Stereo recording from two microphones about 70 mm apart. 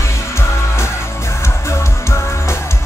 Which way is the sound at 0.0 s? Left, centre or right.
Left.